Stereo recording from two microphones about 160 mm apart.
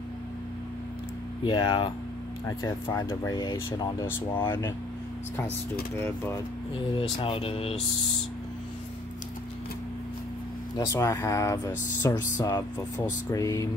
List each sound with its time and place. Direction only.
1.4 s speech: 25° left (ahead or behind)
5.9 s speech: 15° left (ahead or behind)
7.0 s speech: 35° left (ahead or behind)
10.9 s speech: 20° left (ahead or behind)